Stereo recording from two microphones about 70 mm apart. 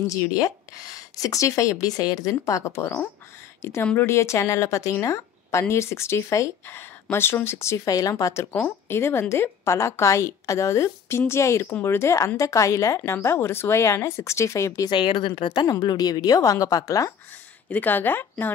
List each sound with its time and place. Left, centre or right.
0.0 s a woman's voice: left
6.6 s a woman's voice: left
8.6 s a woman's voice: left
15.8 s speech: left
17.6 s speech: left